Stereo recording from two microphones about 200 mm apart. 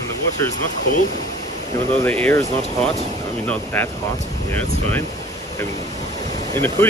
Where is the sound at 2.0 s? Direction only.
10° left (ahead or behind).